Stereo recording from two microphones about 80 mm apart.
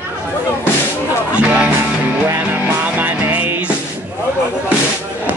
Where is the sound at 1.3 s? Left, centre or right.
Centre.